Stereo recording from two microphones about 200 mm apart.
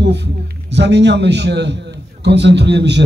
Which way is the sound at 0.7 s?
60° right (ahead or behind).